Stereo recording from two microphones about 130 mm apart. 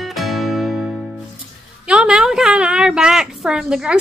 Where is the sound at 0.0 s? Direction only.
Centre (ahead or behind).